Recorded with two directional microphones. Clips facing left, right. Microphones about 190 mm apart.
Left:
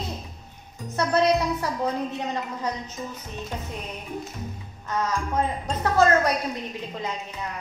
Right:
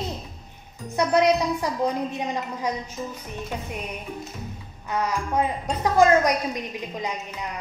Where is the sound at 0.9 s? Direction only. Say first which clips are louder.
Right 2 dB; 15° right (ahead or behind).